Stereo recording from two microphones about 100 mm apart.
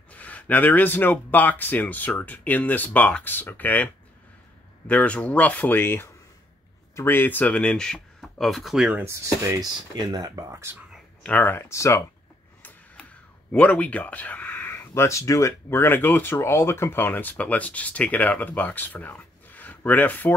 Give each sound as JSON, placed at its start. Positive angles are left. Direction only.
{"t": 0.1, "sound": "speech", "side_deg": 15}
{"t": 8.8, "sound": "speech", "side_deg": -15}
{"t": 9.1, "sound": "speech", "side_deg": -30}
{"t": 9.9, "sound": "speech", "side_deg": -45}
{"t": 11.2, "sound": "speech", "side_deg": 15}
{"t": 13.5, "sound": "speech", "side_deg": 15}